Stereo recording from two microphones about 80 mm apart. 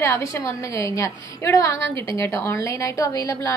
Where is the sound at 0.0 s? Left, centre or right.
Left.